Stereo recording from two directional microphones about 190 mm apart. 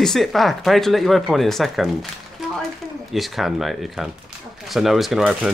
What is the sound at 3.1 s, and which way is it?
Speech, centre (ahead or behind).